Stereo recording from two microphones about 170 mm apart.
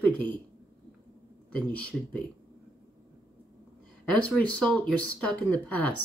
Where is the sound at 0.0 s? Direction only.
10° left (ahead or behind).